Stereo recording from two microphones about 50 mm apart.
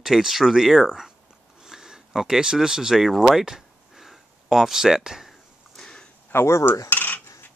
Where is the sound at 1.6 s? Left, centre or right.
Centre.